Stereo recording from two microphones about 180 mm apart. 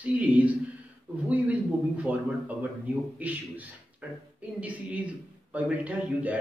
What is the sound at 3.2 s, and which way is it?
Speech, 10° right (ahead or behind).